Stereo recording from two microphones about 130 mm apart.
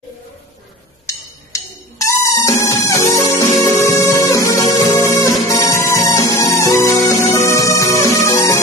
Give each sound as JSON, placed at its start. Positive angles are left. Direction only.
{"t": 1.0, "sound": "music", "side_deg": 25}